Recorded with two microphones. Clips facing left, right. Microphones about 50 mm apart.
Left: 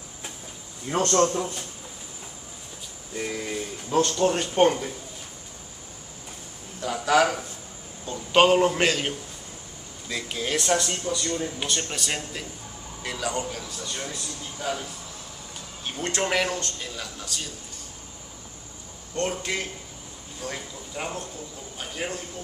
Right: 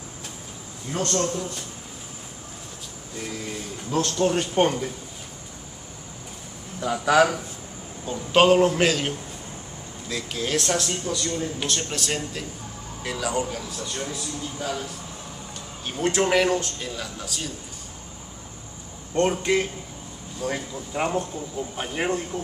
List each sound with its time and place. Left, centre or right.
0.8 s a man's voice: left
3.9 s a man's voice: centre
6.8 s a man's voice: centre
19.1 s a man's voice: right